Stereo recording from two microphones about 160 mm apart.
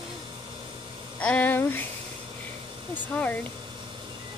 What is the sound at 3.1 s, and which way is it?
Speech, 10° left (ahead or behind).